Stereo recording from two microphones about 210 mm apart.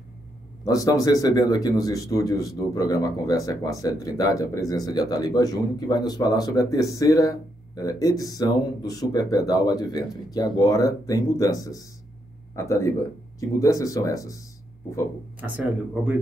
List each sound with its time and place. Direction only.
0.7 s speech: 15° left (ahead or behind)
15.4 s speech: 5° right (ahead or behind)